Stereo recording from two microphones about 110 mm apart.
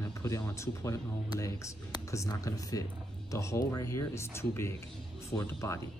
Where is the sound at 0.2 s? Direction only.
30° left (ahead or behind).